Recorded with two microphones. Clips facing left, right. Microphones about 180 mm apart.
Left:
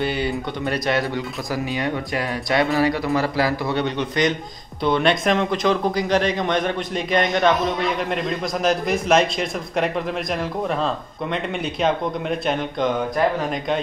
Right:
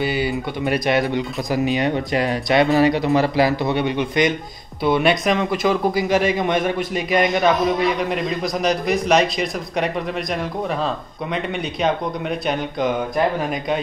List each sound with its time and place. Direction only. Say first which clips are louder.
0.0 s a man's voice: right 2 dB; 5° right (ahead or behind)
0.8 s a man's voice: right 3 dB; 15° right (ahead or behind); by 12.9 s centre (ahead or behind)